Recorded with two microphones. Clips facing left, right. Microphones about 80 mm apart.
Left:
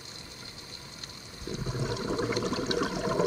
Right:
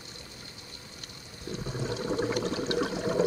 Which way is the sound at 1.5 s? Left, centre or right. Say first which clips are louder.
Even; centre.